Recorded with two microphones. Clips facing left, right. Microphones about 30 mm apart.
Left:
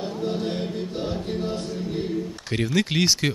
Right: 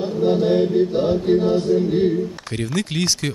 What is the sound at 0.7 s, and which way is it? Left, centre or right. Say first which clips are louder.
Music: right 11 dB; centre.